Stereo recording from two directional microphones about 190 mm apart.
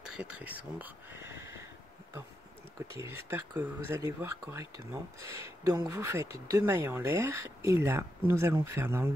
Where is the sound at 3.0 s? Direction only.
15° right (ahead or behind).